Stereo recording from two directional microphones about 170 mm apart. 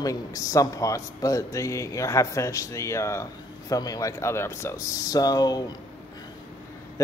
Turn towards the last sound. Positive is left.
turn(degrees=20)  # may be behind; listen again after turning